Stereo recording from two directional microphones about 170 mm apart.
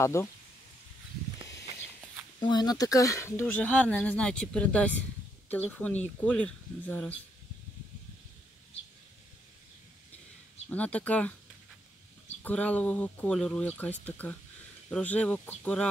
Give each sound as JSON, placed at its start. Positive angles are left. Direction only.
{"t": 0.0, "sound": "speech", "side_deg": 15}
{"t": 2.4, "sound": "speech", "side_deg": 25}
{"t": 10.7, "sound": "speech", "side_deg": 10}
{"t": 12.4, "sound": "speech", "side_deg": 10}